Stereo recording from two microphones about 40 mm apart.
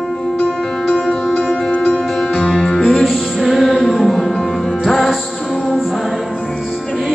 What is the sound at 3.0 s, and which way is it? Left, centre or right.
Music, centre.